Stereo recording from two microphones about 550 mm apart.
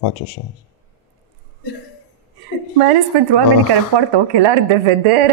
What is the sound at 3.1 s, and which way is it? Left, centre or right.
Speech, right.